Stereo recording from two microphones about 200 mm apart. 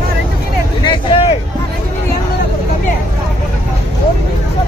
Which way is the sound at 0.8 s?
25° left (ahead or behind).